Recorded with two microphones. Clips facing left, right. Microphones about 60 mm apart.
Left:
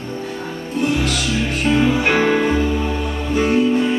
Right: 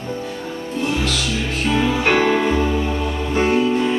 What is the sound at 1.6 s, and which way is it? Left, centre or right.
Music, centre.